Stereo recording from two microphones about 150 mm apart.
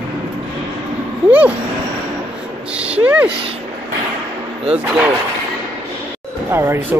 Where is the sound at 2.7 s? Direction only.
10° right (ahead or behind).